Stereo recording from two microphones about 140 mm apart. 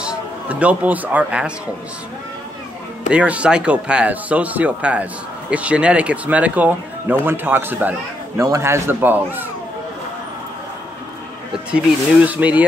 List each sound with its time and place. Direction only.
0.0 s speech: 10° right (ahead or behind)
3.1 s speech: 10° right (ahead or behind)
11.7 s speech: 10° right (ahead or behind)